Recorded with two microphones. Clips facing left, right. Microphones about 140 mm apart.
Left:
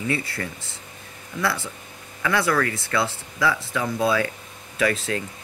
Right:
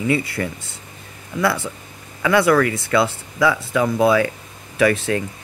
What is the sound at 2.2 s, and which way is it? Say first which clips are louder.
Speech: right 7 dB; 15° right (ahead or behind).